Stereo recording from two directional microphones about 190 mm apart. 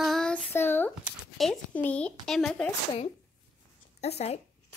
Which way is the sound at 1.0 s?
Centre (ahead or behind).